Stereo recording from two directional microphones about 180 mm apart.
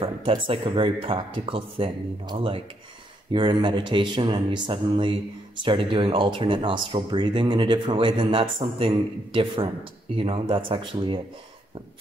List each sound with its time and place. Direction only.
0.0 s speech: 30° right (ahead or behind)